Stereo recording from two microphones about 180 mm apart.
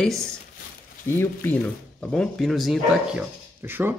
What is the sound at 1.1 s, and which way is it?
A man's voice, 10° left (ahead or behind).